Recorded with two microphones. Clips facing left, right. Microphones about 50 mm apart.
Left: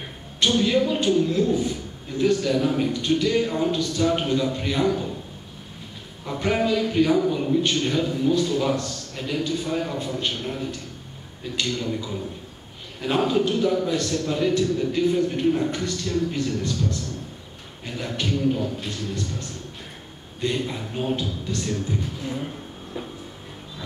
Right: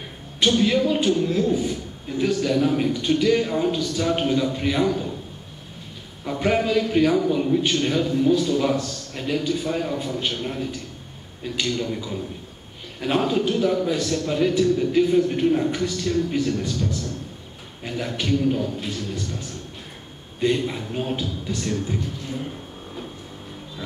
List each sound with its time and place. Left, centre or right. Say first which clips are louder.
0.5 s a man's voice: right 1 dB; centre
6.2 s a man's voice: right 2 dB; centre
20.3 s a man's voice: right 4 dB; centre